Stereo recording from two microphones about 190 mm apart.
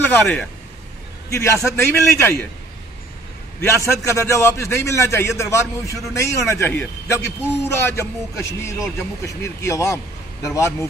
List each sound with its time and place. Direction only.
0.1 s a man's voice: 10° left (ahead or behind)
3.6 s a man's voice: 15° left (ahead or behind)